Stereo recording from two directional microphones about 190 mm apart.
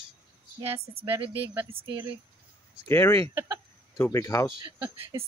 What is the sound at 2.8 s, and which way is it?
Speech, 10° left (ahead or behind).